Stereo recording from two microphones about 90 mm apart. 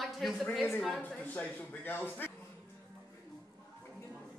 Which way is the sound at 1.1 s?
15° left (ahead or behind).